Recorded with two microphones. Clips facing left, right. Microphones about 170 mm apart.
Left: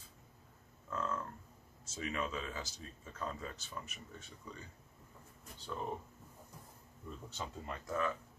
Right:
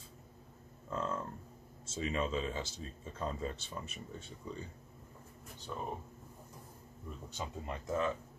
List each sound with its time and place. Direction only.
0.8 s livestock: 30° right (ahead or behind)
1.9 s speech: 25° right (ahead or behind)
7.2 s speech: 20° right (ahead or behind)